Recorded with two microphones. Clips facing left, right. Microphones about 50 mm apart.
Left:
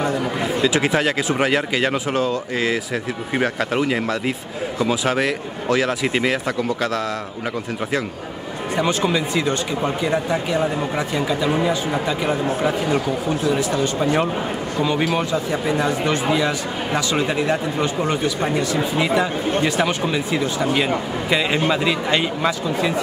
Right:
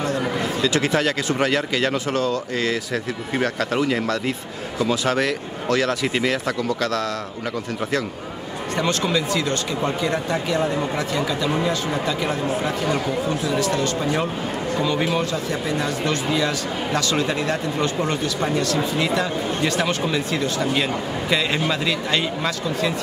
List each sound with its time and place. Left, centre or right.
0.4 s speech: centre
8.7 s speech: centre